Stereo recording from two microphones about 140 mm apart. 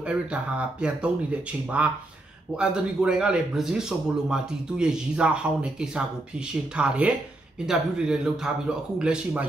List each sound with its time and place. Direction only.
0.0 s speech: 10° right (ahead or behind)